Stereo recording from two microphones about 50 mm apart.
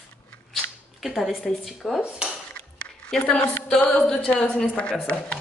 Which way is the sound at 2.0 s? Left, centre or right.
Centre.